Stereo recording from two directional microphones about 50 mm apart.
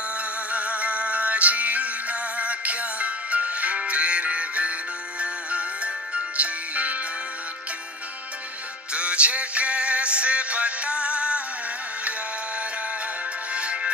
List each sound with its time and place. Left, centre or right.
0.2 s music: right
8.9 s music: right
13.5 s music: right